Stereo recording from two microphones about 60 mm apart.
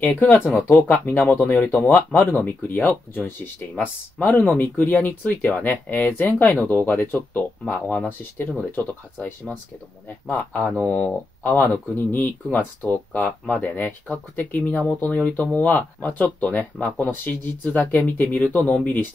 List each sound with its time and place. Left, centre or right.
0.0 s speech: left
7.6 s speech: left
11.4 s speech: left